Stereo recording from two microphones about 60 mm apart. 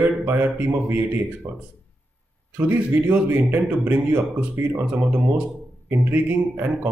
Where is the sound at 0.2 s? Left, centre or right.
Right.